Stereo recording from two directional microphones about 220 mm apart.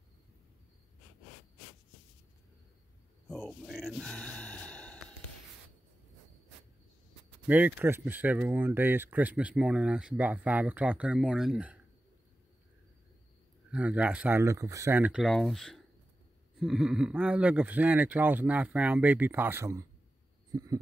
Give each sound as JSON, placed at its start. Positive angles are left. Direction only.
{"t": 3.3, "sound": "a sound", "side_deg": 0}
{"t": 7.4, "sound": "speech", "side_deg": -5}
{"t": 13.7, "sound": "speech", "side_deg": -5}
{"t": 20.5, "sound": "heart sounds", "side_deg": -15}